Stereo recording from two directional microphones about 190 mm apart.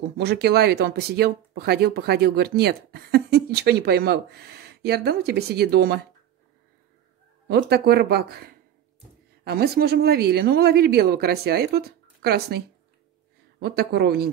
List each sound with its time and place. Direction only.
0.2 s speech: 60° right (ahead or behind)
7.4 s speech: 55° right (ahead or behind)